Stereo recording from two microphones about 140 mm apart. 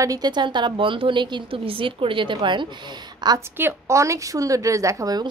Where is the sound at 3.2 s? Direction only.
30° right (ahead or behind).